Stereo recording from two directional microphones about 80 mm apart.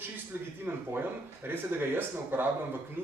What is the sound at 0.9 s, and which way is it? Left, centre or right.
Speech, right.